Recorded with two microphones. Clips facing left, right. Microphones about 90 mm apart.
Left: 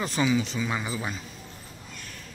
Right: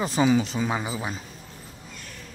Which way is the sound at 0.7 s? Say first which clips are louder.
Right 2 dB; 20° right (ahead or behind).